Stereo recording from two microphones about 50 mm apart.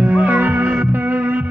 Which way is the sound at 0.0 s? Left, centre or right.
Right.